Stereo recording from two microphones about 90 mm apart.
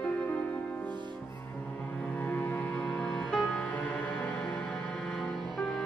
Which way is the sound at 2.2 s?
20° left (ahead or behind).